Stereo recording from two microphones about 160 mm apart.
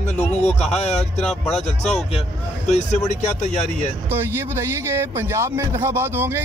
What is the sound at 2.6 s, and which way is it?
Speech, 45° left (ahead or behind).